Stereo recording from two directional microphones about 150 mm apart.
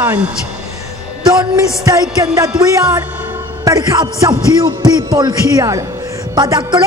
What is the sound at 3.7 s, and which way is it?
A man's voice, 25° right (ahead or behind).